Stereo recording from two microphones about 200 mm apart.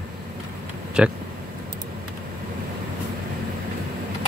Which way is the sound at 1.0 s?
5° right (ahead or behind).